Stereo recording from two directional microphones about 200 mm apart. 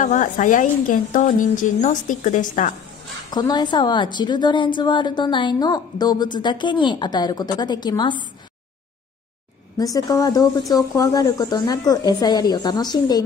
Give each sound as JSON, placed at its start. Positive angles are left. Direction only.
{"t": 0.0, "sound": "a woman's voice", "side_deg": 40}
{"t": 3.3, "sound": "a woman's voice", "side_deg": 20}
{"t": 9.8, "sound": "a woman's voice", "side_deg": 20}